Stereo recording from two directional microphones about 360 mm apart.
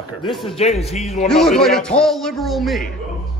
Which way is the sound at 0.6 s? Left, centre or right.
Centre.